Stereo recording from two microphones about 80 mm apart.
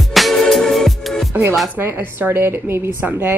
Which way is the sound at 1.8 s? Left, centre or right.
Right.